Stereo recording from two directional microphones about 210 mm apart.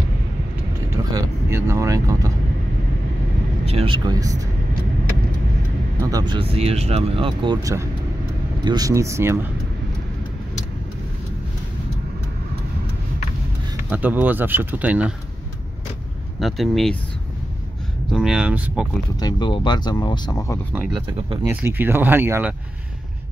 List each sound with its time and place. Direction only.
1.1 s vehicle: 15° right (ahead or behind)
3.6 s speech: 25° right (ahead or behind)
6.0 s speech: 20° right (ahead or behind)
13.8 s speech: 10° right (ahead or behind)
16.3 s speech: centre (ahead or behind)
18.1 s speech: 5° right (ahead or behind)
19.1 s speech: 20° left (ahead or behind)
20.7 s speech: 5° right (ahead or behind)